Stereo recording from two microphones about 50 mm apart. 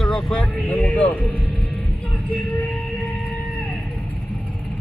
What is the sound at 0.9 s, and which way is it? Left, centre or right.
Speech, left.